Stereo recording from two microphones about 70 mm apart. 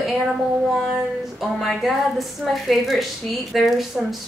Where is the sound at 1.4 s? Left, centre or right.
Centre.